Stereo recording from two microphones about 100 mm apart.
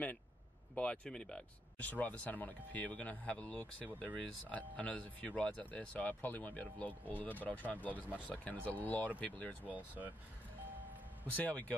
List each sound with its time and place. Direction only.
0.7 s speech: 10° left (ahead or behind)
9.7 s speech: 15° right (ahead or behind)
11.3 s speech: 15° left (ahead or behind)